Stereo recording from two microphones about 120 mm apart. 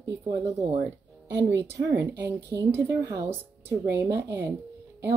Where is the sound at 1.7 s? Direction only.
20° right (ahead or behind).